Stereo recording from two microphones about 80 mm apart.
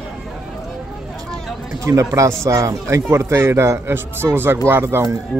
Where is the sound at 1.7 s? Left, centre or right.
Right.